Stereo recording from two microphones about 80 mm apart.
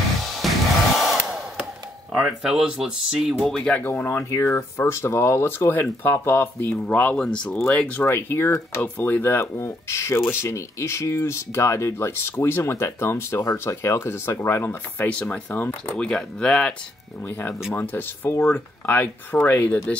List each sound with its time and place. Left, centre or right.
0.4 s music: centre
0.9 s hair dryer: centre
2.1 s speech: centre
3.4 s speech: centre
3.8 s speech: left
4.3 s speech: left; by 8.0 s centre
8.0 s speech: left
15.0 s speech: centre
17.2 s speech: left